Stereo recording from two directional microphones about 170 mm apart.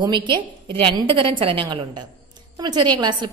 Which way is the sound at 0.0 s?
25° right (ahead or behind).